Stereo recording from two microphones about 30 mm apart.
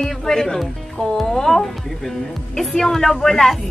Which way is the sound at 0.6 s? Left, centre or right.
Centre.